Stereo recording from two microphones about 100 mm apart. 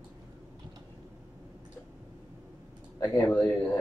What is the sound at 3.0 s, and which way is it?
Speech, 45° left (ahead or behind).